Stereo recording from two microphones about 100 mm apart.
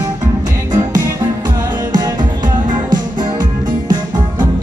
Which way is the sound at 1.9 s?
45° right (ahead or behind).